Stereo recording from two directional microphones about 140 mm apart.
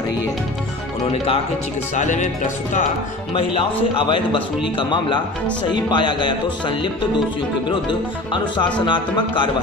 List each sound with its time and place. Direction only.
2.0 s music: 65° left (ahead or behind)
3.3 s a man's voice: 40° left (ahead or behind)
8.8 s a man's voice: 35° left (ahead or behind)